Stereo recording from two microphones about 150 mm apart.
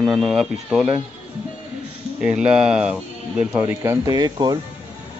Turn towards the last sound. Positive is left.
turn(degrees=-25)  # may be behind; listen again after turning